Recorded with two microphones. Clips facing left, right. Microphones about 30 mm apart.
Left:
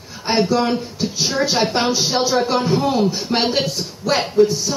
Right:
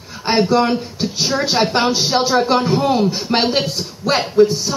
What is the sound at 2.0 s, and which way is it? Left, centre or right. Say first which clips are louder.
Speech: right 2 dB; centre.